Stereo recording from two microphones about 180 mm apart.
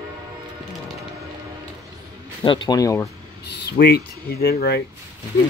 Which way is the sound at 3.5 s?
60° left (ahead or behind).